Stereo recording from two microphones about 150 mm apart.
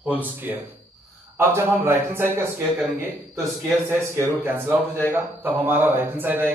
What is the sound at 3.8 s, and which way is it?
A man's voice, 15° right (ahead or behind).